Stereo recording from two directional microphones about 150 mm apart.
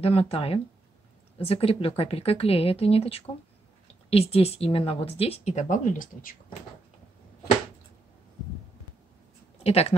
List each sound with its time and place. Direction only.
0.0 s a woman's voice: 40° left (ahead or behind); by 6.3 s 60° left (ahead or behind)
9.6 s speech: 40° left (ahead or behind)